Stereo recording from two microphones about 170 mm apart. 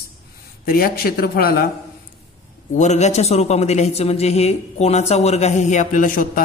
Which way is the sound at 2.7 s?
45° left (ahead or behind).